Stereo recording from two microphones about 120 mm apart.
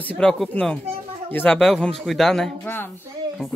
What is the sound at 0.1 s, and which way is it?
Speech, 5° left (ahead or behind).